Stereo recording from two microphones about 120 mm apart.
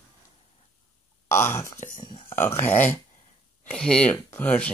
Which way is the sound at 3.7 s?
5° left (ahead or behind).